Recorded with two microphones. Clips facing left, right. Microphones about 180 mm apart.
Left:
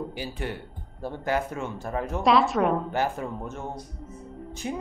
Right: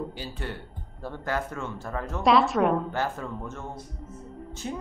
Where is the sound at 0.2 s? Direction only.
15° left (ahead or behind).